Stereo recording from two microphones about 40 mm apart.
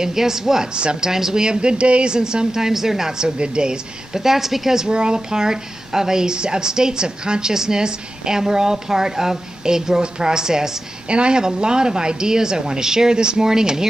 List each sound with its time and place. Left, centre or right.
0.0 s a woman's voice: centre
0.7 s a woman's voice: right
4.2 s a woman's voice: centre